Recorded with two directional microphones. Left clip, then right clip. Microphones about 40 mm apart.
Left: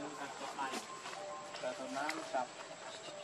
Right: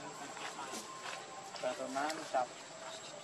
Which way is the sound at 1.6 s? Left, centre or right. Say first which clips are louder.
Right 3 dB; centre.